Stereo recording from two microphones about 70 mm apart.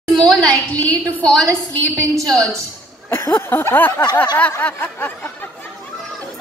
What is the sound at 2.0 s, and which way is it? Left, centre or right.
Speech, right.